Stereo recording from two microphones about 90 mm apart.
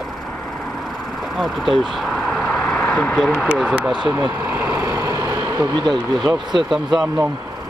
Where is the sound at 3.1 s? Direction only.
Centre (ahead or behind).